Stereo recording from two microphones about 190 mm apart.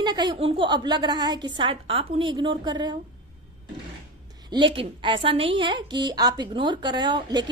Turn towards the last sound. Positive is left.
turn(degrees=-25)  # may be behind; listen again after turning